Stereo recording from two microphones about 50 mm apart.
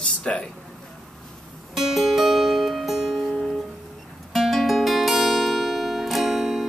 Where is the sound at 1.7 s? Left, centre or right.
Centre.